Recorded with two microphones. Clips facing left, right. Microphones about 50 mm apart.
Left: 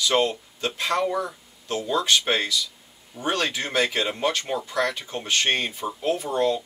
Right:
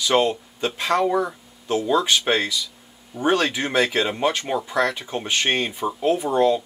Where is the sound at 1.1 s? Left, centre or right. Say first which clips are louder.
Right 5 dB; centre.